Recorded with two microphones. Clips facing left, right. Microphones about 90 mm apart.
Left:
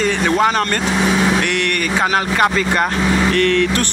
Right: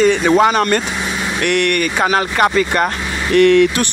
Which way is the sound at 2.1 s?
5° right (ahead or behind).